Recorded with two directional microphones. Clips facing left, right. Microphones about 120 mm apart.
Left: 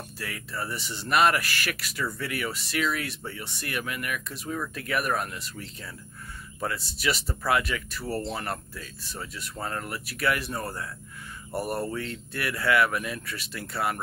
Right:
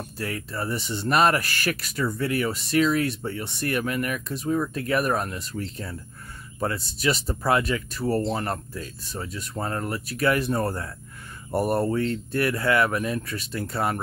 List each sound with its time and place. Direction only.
0.2 s speech: 30° right (ahead or behind)
4.3 s speech: 25° right (ahead or behind)
11.6 s speech: 30° right (ahead or behind)